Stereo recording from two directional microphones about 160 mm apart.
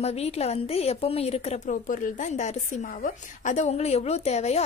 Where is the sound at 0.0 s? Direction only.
40° left (ahead or behind).